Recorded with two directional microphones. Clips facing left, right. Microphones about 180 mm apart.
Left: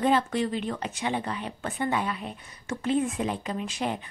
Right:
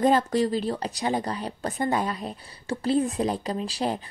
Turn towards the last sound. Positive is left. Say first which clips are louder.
# right 3 dB
turn(degrees=-35)  # may be behind; listen again after turning